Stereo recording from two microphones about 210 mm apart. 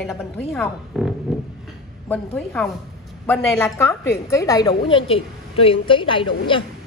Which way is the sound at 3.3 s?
10° left (ahead or behind).